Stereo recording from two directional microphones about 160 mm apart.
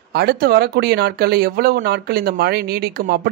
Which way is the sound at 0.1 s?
80° right.